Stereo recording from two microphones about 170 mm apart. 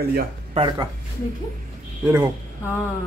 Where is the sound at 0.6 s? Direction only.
25° right (ahead or behind).